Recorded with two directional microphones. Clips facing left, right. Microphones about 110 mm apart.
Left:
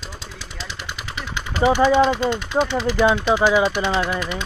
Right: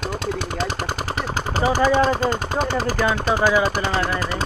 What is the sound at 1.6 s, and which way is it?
Speech, 40° right (ahead or behind).